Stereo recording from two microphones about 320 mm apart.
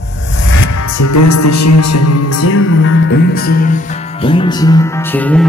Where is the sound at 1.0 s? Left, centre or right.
Left.